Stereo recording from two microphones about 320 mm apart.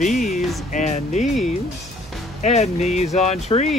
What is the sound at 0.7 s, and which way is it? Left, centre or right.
Speech, left.